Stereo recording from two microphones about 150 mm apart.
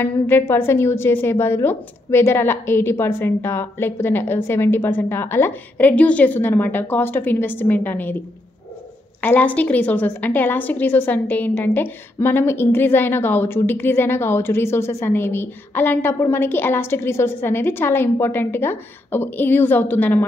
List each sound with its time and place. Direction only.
0.0 s a woman's voice: 15° left (ahead or behind)
9.2 s a woman's voice: 10° left (ahead or behind)